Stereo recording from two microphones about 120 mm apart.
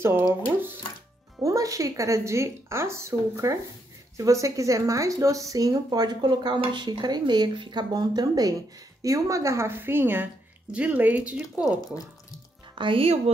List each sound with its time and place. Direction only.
0.0 s a woman's voice: 20° right (ahead or behind)
1.4 s a woman's voice: 30° right (ahead or behind); by 11.4 s 10° right (ahead or behind)
11.6 s speech: 30° left (ahead or behind)
12.7 s speech: 45° right (ahead or behind)